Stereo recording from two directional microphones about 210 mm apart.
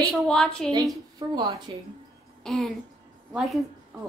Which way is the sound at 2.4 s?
Centre (ahead or behind).